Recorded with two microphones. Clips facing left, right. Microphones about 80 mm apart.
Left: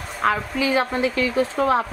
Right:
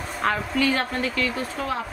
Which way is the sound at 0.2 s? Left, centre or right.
Centre.